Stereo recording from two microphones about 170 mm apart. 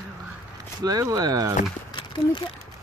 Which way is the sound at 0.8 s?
20° right (ahead or behind).